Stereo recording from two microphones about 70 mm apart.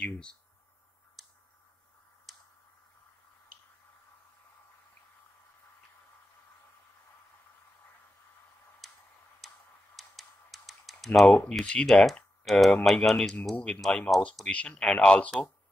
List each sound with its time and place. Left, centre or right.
0.0 s speech: centre
1.2 s a sound: centre
2.3 s tick-tock: centre
8.8 s tick-tock: centre
11.3 s speech: centre